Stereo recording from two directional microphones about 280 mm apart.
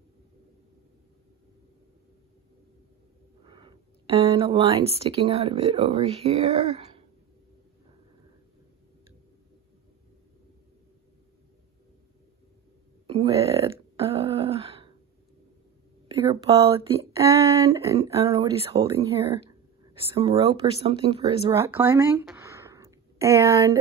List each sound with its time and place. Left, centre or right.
3.4 s speech: centre
13.0 s a sound: centre
16.2 s speech: right